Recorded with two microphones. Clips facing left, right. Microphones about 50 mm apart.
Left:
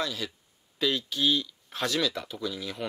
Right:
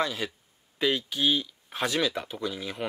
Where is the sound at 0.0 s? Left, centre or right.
Right.